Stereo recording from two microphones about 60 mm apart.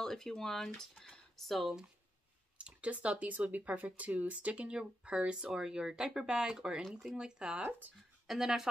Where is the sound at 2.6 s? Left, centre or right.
Right.